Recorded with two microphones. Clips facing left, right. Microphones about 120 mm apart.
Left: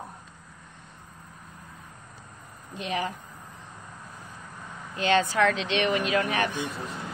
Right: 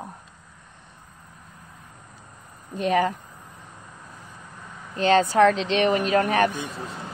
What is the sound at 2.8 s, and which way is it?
Speech, 45° right (ahead or behind).